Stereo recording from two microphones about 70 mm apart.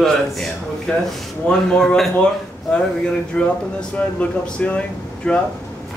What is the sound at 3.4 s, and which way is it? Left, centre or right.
Speech, centre.